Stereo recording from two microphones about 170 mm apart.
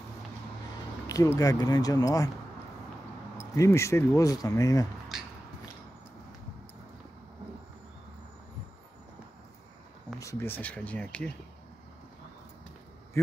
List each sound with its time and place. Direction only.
1.0 s speech: 20° left (ahead or behind)
3.3 s speech: 15° left (ahead or behind)
10.1 s speech: 15° left (ahead or behind)